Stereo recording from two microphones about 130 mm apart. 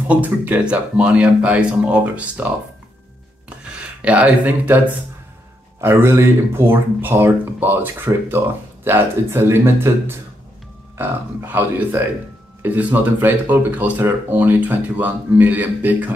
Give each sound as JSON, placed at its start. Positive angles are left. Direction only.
{"t": 0.1, "sound": "speech", "side_deg": -10}
{"t": 3.4, "sound": "a sound", "side_deg": -10}
{"t": 5.8, "sound": "speech", "side_deg": -15}